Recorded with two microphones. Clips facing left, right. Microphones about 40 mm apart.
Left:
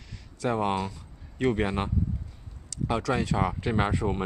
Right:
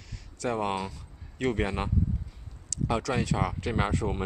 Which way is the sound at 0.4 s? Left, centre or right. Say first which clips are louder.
Left 2 dB; centre.